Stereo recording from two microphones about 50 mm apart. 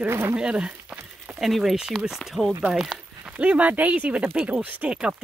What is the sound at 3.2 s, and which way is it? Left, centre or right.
Speech, right.